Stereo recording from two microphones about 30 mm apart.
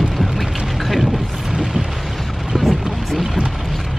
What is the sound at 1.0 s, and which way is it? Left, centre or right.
Boat, centre.